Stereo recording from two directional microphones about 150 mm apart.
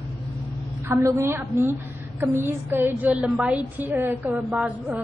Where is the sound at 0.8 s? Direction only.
20° right (ahead or behind).